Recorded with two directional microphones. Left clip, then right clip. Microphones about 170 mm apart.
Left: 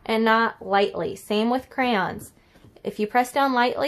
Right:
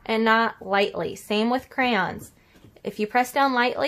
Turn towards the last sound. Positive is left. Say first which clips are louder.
# even
turn(degrees=15)  # may be behind; listen again after turning